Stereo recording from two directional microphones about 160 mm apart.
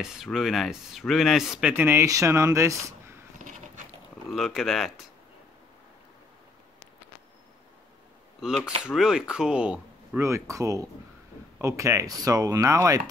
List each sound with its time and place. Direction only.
0.0 s speech: 5° right (ahead or behind); by 3.2 s 20° right (ahead or behind)
3.3 s a sound: 50° right (ahead or behind)
4.3 s speech: centre (ahead or behind)
8.4 s speech: 5° right (ahead or behind)
10.2 s speech: 20° right (ahead or behind)